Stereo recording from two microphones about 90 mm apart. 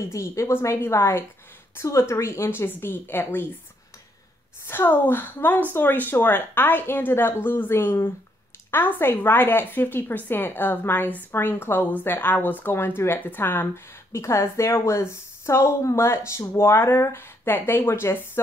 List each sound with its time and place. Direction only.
0.0 s a woman's voice: 35° left (ahead or behind)
4.6 s a woman's voice: 25° left (ahead or behind)